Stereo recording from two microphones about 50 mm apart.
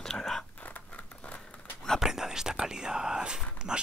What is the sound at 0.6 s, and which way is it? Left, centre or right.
Zipper, left.